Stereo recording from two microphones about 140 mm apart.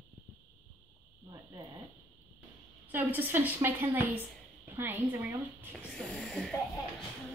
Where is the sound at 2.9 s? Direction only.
15° right (ahead or behind).